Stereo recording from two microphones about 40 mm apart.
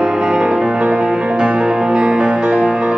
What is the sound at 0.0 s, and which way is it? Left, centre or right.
Music, right.